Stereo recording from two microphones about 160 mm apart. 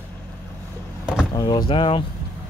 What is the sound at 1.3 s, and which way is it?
Speech, 25° left (ahead or behind).